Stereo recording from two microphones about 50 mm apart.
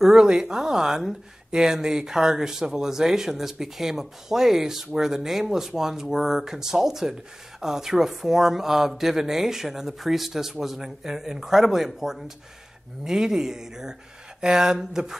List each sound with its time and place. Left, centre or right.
0.0 s speech: centre